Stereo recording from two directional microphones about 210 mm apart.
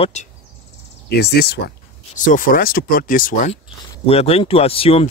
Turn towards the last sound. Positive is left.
turn(degrees=25)  # may be behind; listen again after turning